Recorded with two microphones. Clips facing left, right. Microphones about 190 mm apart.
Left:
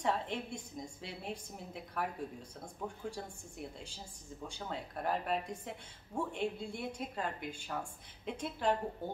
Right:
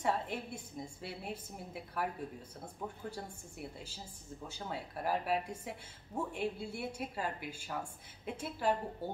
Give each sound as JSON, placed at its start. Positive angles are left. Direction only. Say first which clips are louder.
{"t": 0.0, "sound": "a woman's voice", "louder": "even", "side_deg": -5}